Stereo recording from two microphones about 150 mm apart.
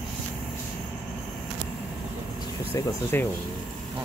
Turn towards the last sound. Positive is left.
turn(degrees=15)  # may be behind; listen again after turning